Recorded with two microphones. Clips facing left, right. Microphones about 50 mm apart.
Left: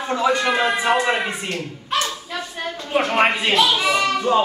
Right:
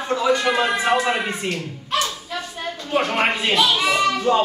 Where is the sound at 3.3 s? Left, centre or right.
Centre.